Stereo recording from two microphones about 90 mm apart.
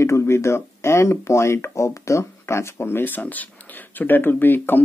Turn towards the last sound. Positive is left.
turn(degrees=20)  # may be behind; listen again after turning